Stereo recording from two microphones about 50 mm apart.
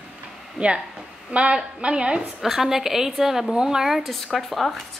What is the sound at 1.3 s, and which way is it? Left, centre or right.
Speech, right.